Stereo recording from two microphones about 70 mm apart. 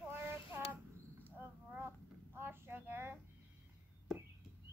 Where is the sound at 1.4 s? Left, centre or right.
Right.